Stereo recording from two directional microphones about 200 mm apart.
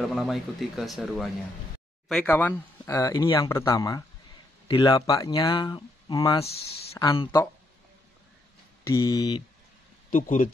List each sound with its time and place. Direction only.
0.0 s speech: centre (ahead or behind); by 6.4 s 20° left (ahead or behind)
6.4 s speech: 30° left (ahead or behind)
6.9 s a sound: 15° left (ahead or behind)
8.8 s speech: 15° left (ahead or behind)
10.1 s speech: 40° left (ahead or behind)